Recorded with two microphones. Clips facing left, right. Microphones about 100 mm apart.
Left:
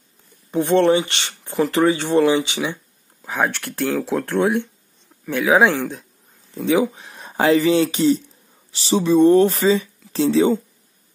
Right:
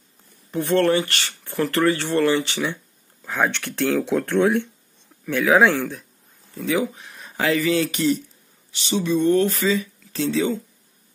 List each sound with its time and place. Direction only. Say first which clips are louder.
0.5 s speech: left 3 dB; 20° left (ahead or behind)
6.5 s speech: left 5 dB; 30° left (ahead or behind)